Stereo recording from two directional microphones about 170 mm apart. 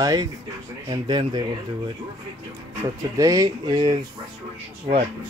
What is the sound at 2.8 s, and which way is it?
Speech, 20° right (ahead or behind).